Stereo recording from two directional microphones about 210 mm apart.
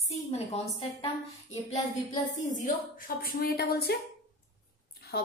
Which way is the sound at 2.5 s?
45° left (ahead or behind).